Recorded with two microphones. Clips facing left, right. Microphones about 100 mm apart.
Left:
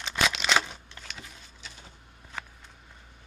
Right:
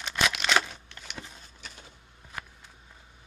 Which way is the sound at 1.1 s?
55° right (ahead or behind).